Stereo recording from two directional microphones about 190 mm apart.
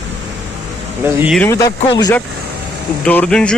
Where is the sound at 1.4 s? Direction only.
15° left (ahead or behind).